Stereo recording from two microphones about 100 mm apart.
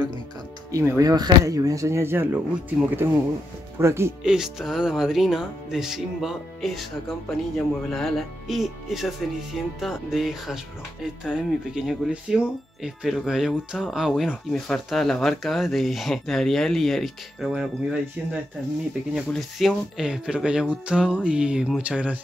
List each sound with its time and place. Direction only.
0.7 s speech: 35° right (ahead or behind)
4.2 s speech: 5° right (ahead or behind)